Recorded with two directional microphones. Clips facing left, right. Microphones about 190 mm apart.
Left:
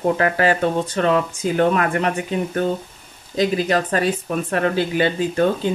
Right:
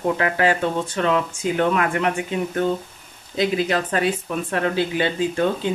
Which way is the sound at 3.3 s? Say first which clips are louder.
Left 2 dB; 40° left (ahead or behind).